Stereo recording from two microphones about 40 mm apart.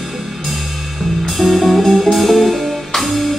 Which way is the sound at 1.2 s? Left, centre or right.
Centre.